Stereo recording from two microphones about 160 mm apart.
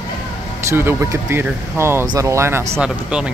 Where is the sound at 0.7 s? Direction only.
15° right (ahead or behind).